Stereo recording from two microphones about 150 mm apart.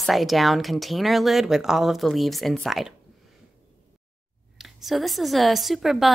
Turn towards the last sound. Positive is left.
turn(degrees=0)  # may be behind; listen again after turning